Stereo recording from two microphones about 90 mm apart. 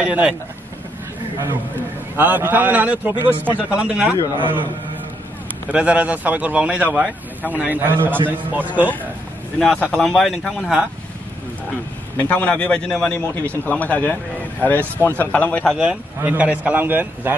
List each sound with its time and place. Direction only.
0.0 s speech: 15° right (ahead or behind)
2.1 s a man's voice: 20° right (ahead or behind)
5.7 s a man's voice: 15° right (ahead or behind)
9.6 s speech: 5° left (ahead or behind)
12.2 s a man's voice: 15° left (ahead or behind)
16.2 s a man's voice: 15° right (ahead or behind)